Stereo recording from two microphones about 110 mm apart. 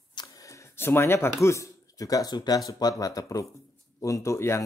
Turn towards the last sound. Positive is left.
turn(degrees=25)  # may be behind; listen again after turning